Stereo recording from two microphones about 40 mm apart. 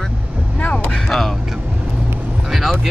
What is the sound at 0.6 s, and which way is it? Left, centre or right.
Vehicle, left.